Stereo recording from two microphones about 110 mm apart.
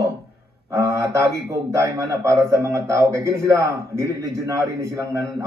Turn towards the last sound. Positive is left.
turn(degrees=-30)  # may be behind; listen again after turning